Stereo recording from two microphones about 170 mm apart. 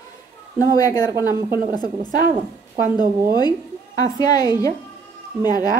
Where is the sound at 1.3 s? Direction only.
15° right (ahead or behind).